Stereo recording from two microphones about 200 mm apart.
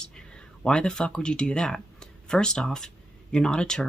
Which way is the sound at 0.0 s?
5° left (ahead or behind).